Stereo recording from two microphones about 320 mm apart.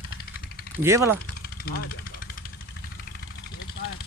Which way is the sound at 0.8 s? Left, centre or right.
Centre.